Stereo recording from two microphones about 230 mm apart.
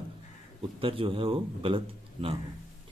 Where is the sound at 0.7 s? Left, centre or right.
Right.